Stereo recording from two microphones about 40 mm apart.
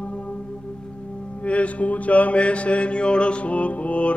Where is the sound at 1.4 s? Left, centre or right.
Left.